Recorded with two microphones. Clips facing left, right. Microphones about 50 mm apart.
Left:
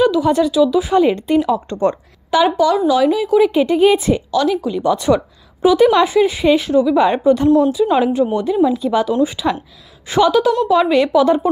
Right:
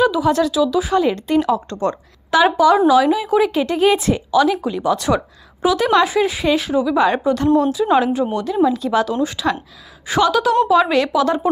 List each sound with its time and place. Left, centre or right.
0.0 s speech: centre
0.9 s a woman's voice: centre
2.3 s speech: centre
3.5 s speech: centre
4.3 s a woman's voice: centre